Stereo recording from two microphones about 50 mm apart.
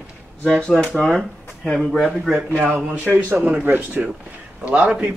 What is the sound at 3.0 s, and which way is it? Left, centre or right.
Speech, right.